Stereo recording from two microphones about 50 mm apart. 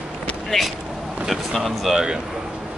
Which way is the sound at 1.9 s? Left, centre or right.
Centre.